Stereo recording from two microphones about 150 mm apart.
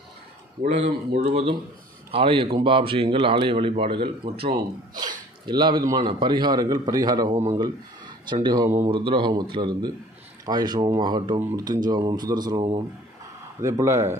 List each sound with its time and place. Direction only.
0.6 s speech: 50° right (ahead or behind); by 7.2 s 25° right (ahead or behind)
7.2 s speech: 50° right (ahead or behind)
8.3 s speech: 30° right (ahead or behind)